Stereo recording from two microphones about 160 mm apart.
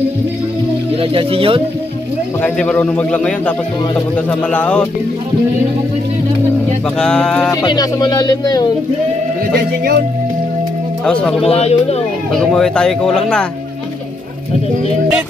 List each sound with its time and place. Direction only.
1.1 s speech: 35° right (ahead or behind)
2.4 s a man's voice: 10° left (ahead or behind)
7.0 s speech: 5° left (ahead or behind)
7.6 s speech: 25° left (ahead or behind)
11.1 s speech: 5° left (ahead or behind)
11.4 s speech: 40° left (ahead or behind)
12.3 s speech: 5° left (ahead or behind)